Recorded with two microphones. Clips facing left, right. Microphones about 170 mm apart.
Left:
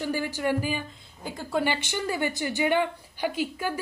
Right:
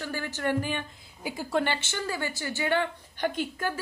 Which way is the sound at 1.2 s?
Centre (ahead or behind).